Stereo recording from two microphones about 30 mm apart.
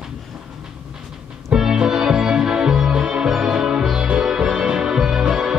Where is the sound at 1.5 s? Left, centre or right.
Right.